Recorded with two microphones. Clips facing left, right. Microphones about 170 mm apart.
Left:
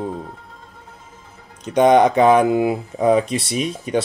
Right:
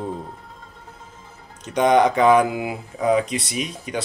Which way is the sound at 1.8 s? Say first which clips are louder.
Left 4 dB; 25° left (ahead or behind).